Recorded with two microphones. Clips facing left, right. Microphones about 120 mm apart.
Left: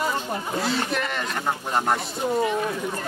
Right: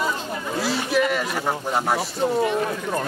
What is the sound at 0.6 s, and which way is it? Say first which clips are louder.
Speech: right 7 dB; 5° right (ahead or behind).